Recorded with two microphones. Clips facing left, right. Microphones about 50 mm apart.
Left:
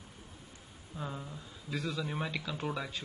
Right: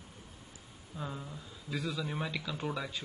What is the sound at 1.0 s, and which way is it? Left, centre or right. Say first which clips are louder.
Speech: even; centre.